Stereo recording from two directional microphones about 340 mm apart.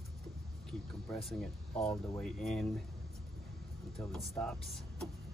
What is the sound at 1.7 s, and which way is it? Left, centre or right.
Speech, centre.